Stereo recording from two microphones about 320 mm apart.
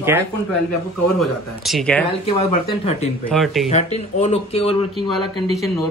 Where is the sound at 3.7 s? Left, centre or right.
Centre.